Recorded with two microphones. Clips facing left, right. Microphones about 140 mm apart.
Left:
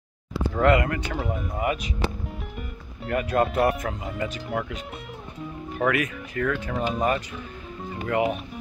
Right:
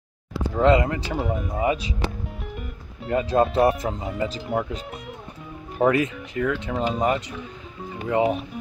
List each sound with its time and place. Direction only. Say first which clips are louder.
0.6 s speech: right 2 dB; 20° right (ahead or behind)
1.1 s speech: right 3 dB; centre (ahead or behind)
1.6 s speech: right 3 dB; 30° right (ahead or behind)
3.1 s speech: right 3 dB; 25° right (ahead or behind)
5.8 s speech: right 4 dB; 30° right (ahead or behind)
6.3 s speech: right 1 dB; 15° right (ahead or behind)